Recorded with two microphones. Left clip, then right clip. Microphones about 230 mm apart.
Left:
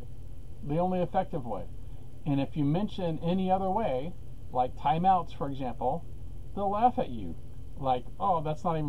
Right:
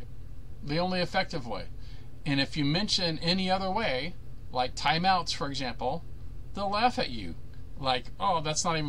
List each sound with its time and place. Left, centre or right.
0.7 s a man's voice: right